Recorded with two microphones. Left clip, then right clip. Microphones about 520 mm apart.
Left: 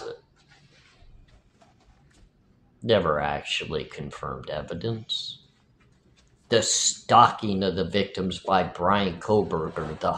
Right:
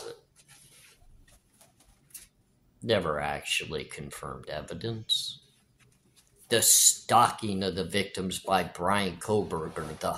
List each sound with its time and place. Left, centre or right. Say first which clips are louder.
2.9 s speech: left 5 dB; right
6.4 s speech: left 1 dB; right